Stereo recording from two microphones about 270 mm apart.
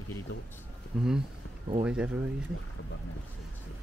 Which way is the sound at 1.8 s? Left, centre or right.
Centre.